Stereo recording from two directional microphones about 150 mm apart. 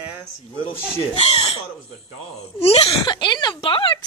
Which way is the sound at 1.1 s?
40° left (ahead or behind).